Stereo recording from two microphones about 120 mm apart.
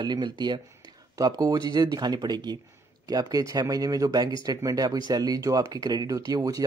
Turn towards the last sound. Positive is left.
turn(degrees=-30)  # may be behind; listen again after turning